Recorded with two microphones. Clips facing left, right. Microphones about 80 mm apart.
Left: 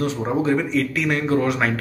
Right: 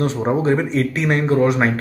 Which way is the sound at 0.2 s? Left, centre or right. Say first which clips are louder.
Right 3 dB; right.